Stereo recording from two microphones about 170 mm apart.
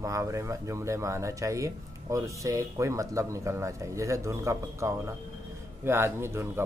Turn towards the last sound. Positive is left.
turn(degrees=-15)  # may be behind; listen again after turning